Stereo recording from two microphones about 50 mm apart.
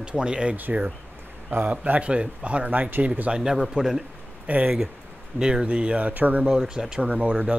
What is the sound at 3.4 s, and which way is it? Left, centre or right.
Speech, centre.